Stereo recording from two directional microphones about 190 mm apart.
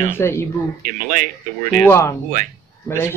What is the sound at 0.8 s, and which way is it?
Speech, 45° right (ahead or behind).